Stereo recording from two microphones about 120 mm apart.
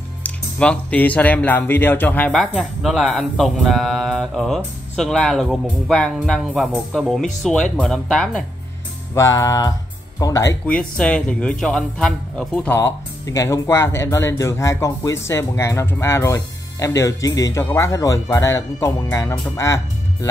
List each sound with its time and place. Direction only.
0.2 s speech: 10° left (ahead or behind)
2.3 s speech: centre (ahead or behind)
9.1 s speech: 30° left (ahead or behind)
10.7 s speech: 10° left (ahead or behind); by 20.2 s 25° left (ahead or behind)